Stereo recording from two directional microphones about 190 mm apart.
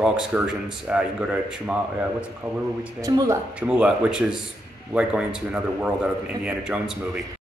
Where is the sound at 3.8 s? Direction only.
5° right (ahead or behind).